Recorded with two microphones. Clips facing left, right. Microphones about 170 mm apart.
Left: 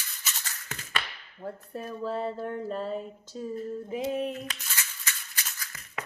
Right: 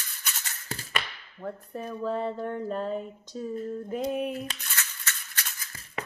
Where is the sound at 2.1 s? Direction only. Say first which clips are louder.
Right 2 dB; 5° left (ahead or behind).